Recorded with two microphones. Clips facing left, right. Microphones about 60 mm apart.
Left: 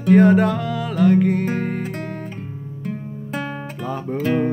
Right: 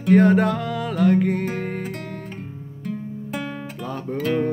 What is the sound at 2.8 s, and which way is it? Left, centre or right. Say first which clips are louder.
Music: even; left.